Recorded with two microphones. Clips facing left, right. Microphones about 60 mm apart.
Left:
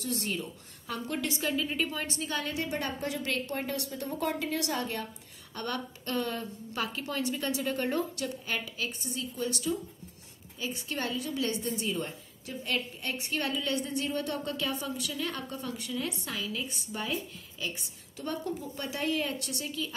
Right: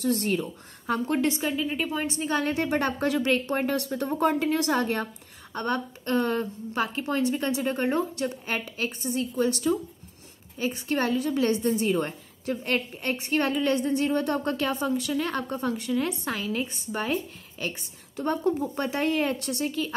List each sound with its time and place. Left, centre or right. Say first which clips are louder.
0.0 s a woman's voice: right 8 dB; right
1.4 s a woman's voice: right 3 dB; centre; by 2.9 s right
3.0 s a woman's voice: right 9 dB; right
5.5 s a woman's voice: right 7 dB; right